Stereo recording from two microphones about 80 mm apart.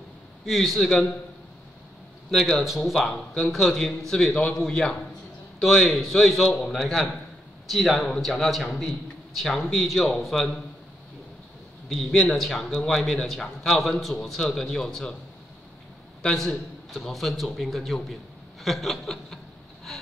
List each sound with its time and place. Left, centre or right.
0.5 s a man's voice: centre
2.3 s a man's voice: centre
11.9 s a man's voice: centre
16.2 s a man's voice: centre